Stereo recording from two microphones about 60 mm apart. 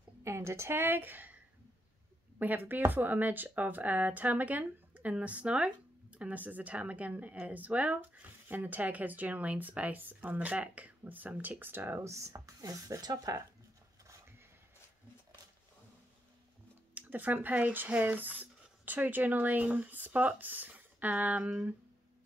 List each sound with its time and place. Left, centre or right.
0.2 s a woman's voice: right
16.9 s speech: right